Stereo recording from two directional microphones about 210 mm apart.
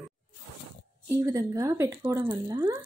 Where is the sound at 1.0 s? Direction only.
15° right (ahead or behind).